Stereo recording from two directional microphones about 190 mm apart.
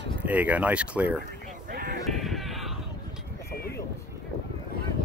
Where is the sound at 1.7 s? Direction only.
50° right (ahead or behind).